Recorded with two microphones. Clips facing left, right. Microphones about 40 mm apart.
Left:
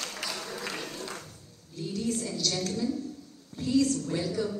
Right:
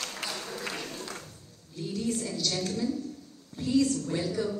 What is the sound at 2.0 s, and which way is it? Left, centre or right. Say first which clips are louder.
Speech: even; centre.